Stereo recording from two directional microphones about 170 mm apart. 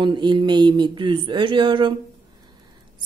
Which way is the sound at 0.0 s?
25° right (ahead or behind).